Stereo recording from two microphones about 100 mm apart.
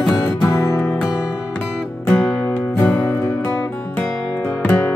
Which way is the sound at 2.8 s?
25° left (ahead or behind).